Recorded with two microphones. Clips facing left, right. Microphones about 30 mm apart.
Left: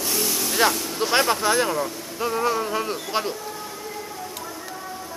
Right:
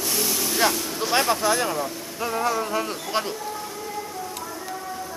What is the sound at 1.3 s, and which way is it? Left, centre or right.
Speech, left.